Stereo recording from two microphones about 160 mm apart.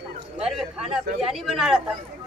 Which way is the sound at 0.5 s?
5° right (ahead or behind).